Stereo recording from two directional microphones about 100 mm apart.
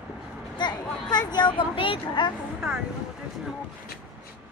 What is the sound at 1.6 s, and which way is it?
Speech, 60° left (ahead or behind).